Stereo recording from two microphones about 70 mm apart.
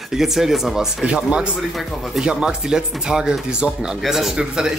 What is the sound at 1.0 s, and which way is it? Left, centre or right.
Speech, centre.